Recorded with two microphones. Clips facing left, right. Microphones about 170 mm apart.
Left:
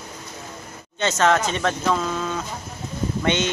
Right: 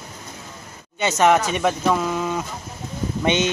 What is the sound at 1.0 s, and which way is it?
Speech, 15° right (ahead or behind).